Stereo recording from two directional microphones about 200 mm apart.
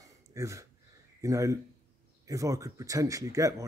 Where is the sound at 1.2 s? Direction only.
15° right (ahead or behind).